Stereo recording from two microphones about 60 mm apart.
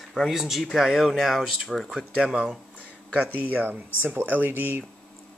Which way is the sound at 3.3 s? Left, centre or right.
Right.